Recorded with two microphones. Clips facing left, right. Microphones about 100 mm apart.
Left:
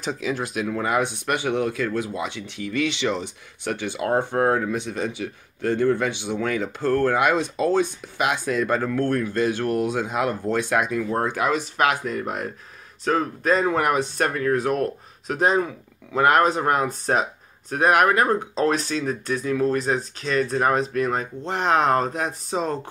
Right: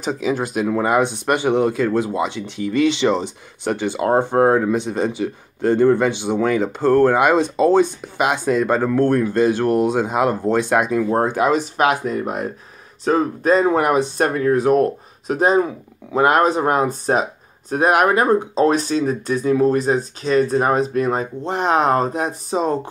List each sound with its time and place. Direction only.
0.0 s speech: 20° right (ahead or behind)
11.0 s speech: 40° right (ahead or behind)
11.2 s speech: 25° right (ahead or behind)